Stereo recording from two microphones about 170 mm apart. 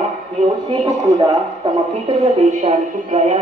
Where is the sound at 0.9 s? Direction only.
20° right (ahead or behind).